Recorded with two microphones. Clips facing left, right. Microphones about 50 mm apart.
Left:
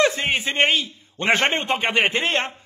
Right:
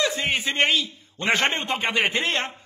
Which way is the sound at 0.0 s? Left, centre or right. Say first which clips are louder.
Left 5 dB; left.